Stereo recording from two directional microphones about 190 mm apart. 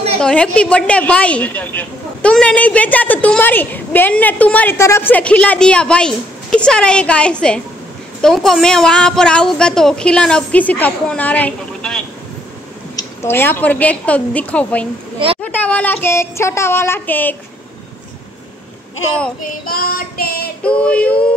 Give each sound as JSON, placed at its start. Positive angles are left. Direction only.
{"t": 0.2, "sound": "a woman's voice", "side_deg": 5}
{"t": 19.4, "sound": "child singing", "side_deg": 50}
{"t": 20.6, "sound": "a woman's voice", "side_deg": 5}